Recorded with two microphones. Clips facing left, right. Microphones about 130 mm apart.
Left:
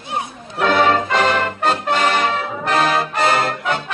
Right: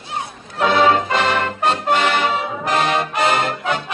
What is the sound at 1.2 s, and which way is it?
Music, 40° left (ahead or behind).